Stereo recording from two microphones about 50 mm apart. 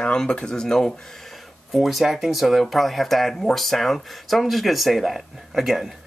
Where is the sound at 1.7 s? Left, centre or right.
Centre.